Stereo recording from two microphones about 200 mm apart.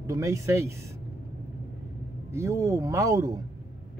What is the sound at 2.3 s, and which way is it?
Speech, 15° right (ahead or behind).